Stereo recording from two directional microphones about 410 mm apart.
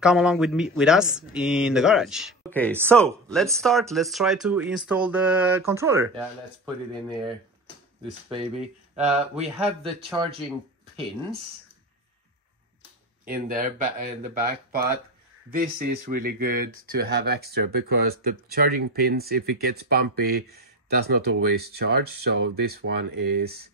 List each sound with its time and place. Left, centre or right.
0.0 s speech: centre
8.9 s speech: centre
13.2 s speech: right